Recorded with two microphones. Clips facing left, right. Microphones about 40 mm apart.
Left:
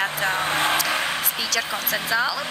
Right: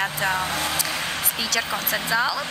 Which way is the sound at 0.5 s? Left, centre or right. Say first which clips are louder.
Left 5 dB; left.